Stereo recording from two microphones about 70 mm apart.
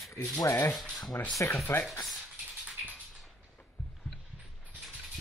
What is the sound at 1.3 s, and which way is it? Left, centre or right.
Sanding, left.